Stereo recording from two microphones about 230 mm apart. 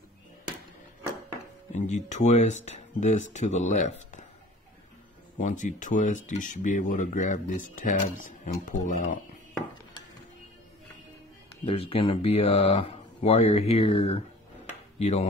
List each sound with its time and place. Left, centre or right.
1.7 s speech: left
5.4 s speech: left
11.6 s speech: left